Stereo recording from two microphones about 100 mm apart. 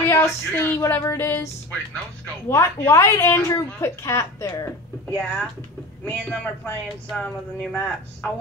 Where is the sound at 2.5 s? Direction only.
30° left (ahead or behind).